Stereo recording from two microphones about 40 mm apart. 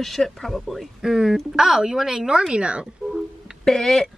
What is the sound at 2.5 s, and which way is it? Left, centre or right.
Speech, right.